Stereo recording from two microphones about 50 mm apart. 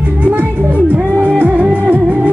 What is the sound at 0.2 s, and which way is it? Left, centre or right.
Music, right.